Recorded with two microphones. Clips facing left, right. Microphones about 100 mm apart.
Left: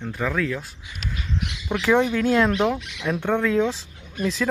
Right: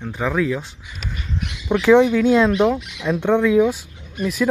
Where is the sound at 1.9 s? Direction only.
15° right (ahead or behind).